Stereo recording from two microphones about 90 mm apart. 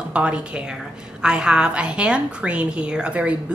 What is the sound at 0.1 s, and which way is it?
A woman's voice, 10° right (ahead or behind).